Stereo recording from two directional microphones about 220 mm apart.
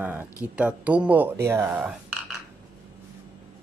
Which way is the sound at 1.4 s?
10° right (ahead or behind).